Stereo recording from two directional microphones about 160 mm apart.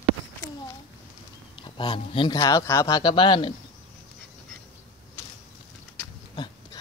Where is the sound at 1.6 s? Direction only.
30° left (ahead or behind).